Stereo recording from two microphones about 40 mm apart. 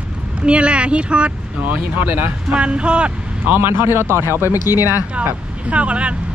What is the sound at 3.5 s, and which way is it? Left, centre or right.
Speech, right.